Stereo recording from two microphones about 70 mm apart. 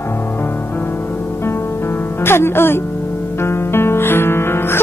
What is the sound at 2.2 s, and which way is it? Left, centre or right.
Speech, left.